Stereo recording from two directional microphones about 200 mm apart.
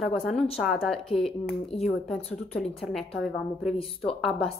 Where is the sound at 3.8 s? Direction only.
30° left (ahead or behind).